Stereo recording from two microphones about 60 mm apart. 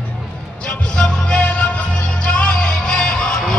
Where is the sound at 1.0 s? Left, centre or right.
Left.